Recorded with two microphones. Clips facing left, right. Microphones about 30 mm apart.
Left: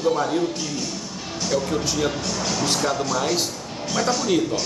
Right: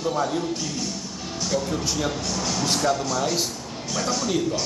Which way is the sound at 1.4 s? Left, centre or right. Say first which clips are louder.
Left 3 dB; centre.